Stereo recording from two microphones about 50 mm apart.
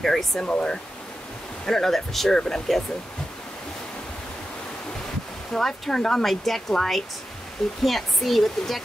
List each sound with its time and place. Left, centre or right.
0.0 s speech: centre
0.4 s speech: centre
1.7 s speech: centre
5.5 s speech: centre